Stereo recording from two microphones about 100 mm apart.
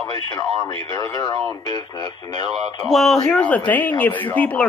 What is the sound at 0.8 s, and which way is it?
Speech, 40° left (ahead or behind).